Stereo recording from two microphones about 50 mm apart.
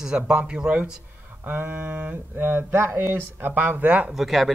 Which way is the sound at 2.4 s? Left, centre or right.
Right.